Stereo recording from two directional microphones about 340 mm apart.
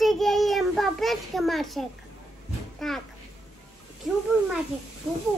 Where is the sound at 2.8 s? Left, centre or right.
Centre.